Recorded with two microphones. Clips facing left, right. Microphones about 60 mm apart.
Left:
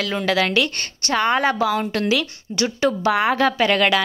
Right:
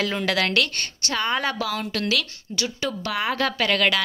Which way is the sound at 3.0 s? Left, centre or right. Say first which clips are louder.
Left 6 dB; left.